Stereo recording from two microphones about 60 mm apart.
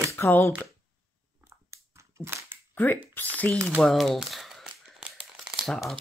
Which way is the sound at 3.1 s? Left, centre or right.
Left.